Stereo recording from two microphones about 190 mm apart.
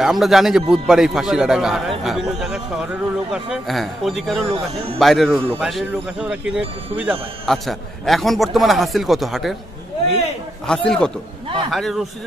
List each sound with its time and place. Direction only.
0.0 s speech: centre (ahead or behind)
10.7 s speech: 5° left (ahead or behind)